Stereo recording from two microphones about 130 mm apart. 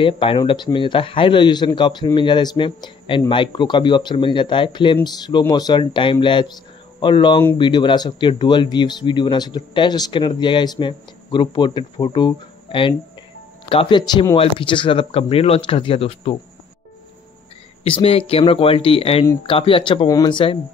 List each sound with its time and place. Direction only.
0.0 s speech: 40° left (ahead or behind)
17.8 s speech: 45° left (ahead or behind)
20.1 s speech: 35° left (ahead or behind)